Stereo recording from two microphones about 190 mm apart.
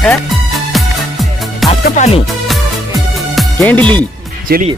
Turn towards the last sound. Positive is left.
turn(degrees=-55)  # may be behind; listen again after turning